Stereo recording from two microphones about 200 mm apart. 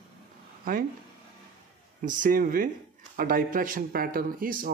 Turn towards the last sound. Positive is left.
turn(degrees=-45)  # may be behind; listen again after turning